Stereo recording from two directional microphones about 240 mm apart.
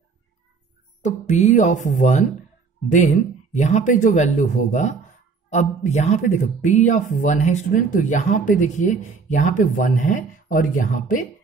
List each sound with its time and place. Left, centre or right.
1.0 s speech: left